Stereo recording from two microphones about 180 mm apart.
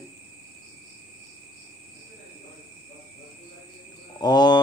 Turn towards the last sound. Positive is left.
turn(degrees=25)  # may be behind; listen again after turning